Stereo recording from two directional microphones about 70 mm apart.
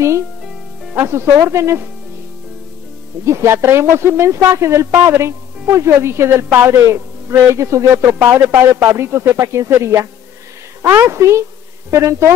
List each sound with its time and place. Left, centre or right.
0.9 s a woman's voice: right
3.3 s a woman's voice: right
6.9 s a man's voice: right
7.9 s a woman's voice: right